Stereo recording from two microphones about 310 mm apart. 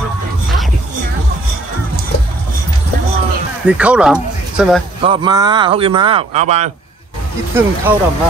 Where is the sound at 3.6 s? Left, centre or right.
Centre.